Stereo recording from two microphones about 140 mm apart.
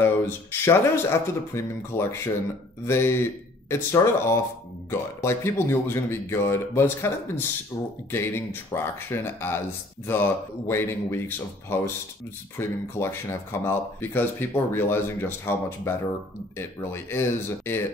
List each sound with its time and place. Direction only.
0.0 s speech: 20° left (ahead or behind)